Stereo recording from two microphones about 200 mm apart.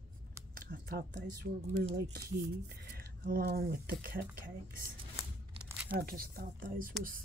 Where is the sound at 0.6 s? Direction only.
45° right (ahead or behind).